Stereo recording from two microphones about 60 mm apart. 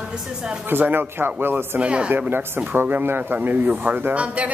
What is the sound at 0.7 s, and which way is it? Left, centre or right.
Speech, right.